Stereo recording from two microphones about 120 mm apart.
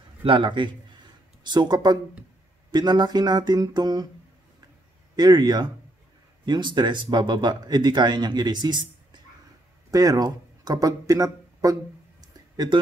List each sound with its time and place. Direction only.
0.2 s a man's voice: 45° right (ahead or behind)
5.1 s speech: 35° right (ahead or behind)
12.2 s a sound: 35° right (ahead or behind)